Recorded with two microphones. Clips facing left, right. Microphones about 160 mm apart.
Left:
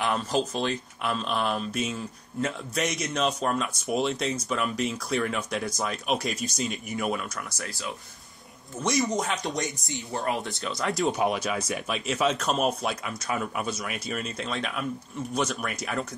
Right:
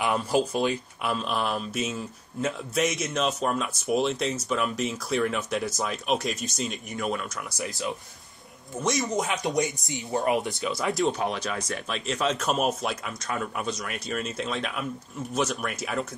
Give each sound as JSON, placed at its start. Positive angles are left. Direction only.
{"t": 0.0, "sound": "speech", "side_deg": -10}
{"t": 7.5, "sound": "speech", "side_deg": -20}
{"t": 8.8, "sound": "speech", "side_deg": 0}
{"t": 9.9, "sound": "speech", "side_deg": -15}
{"t": 10.5, "sound": "speech", "side_deg": -5}
{"t": 11.1, "sound": "speech", "side_deg": 10}